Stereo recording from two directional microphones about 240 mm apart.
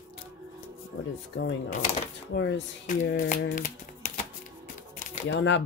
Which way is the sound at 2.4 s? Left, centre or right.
Left.